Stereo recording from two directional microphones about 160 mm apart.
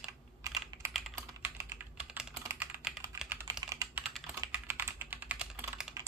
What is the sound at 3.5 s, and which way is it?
Typing, 20° right (ahead or behind).